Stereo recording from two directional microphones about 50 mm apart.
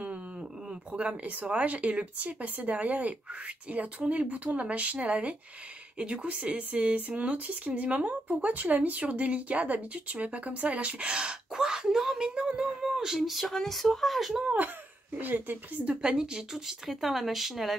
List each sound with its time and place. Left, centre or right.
0.9 s speech: right; by 12.3 s centre
12.4 s speech: right
12.6 s speech: centre
15.1 s speech: right; by 17.7 s centre